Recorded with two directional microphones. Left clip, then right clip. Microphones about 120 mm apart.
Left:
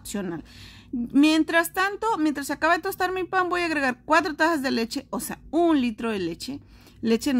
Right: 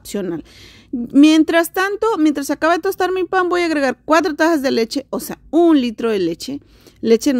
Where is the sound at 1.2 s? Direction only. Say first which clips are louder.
Right 8 dB; 65° right (ahead or behind).